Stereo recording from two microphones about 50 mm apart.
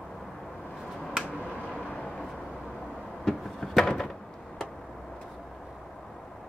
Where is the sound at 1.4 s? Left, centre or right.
Left.